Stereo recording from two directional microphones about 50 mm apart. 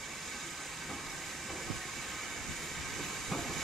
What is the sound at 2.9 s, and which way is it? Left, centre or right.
Train, centre.